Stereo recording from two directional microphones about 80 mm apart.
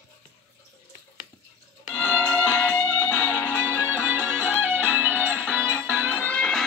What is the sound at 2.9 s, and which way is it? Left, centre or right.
Music, left.